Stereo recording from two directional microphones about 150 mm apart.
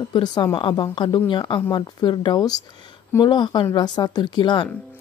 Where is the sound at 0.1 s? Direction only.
30° left (ahead or behind).